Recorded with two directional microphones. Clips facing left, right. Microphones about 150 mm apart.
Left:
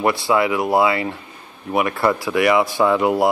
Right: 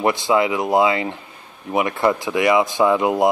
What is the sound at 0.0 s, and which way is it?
Speech, 20° right (ahead or behind).